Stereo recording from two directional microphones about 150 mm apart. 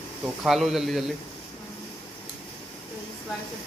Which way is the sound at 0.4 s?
Centre (ahead or behind).